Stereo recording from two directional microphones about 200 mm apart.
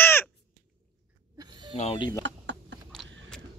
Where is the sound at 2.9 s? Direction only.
Centre (ahead or behind).